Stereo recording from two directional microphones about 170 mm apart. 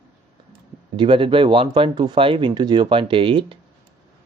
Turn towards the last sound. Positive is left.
turn(degrees=-30)  # may be behind; listen again after turning